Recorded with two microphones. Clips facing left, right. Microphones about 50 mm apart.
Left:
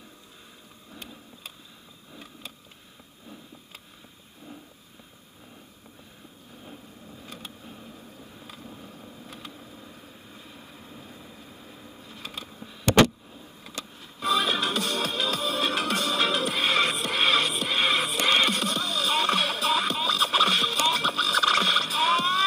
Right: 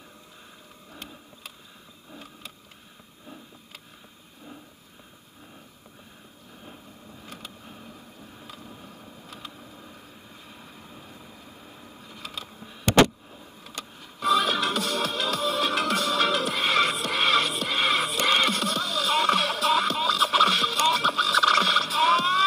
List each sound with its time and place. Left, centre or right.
7.2 s vehicle: right
7.6 s a sound: centre
8.6 s vehicle: right
14.2 s music: left